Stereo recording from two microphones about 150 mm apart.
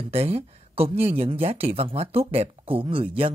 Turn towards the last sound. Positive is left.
turn(degrees=-35)  # may be behind; listen again after turning